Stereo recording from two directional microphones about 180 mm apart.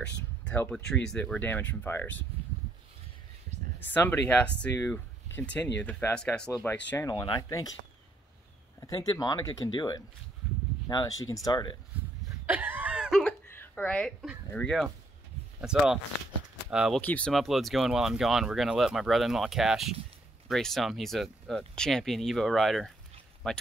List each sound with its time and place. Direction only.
0.5 s speech: 10° left (ahead or behind)
3.8 s speech: 10° left (ahead or behind)
6.9 s speech: 20° left (ahead or behind)
8.8 s speech: 20° left (ahead or behind)
12.4 s a sound: 10° right (ahead or behind)
13.5 s a sound: 10° left (ahead or behind)
14.5 s speech: 5° left (ahead or behind)
17.0 s speech: 5° left (ahead or behind)